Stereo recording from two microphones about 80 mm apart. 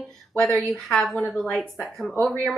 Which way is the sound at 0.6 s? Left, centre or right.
Centre.